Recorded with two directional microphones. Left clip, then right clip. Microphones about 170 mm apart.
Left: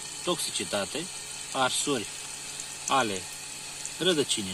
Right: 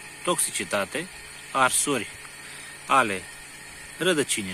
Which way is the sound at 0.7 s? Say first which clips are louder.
Right 4 dB; 20° right (ahead or behind).